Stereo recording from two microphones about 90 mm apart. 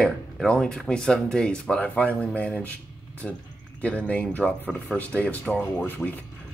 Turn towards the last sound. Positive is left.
turn(degrees=20)  # may be behind; listen again after turning